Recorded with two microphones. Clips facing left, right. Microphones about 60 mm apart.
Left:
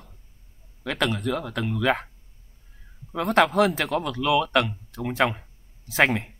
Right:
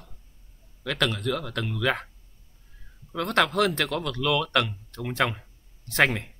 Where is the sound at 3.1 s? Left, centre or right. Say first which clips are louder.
Left 3 dB; centre.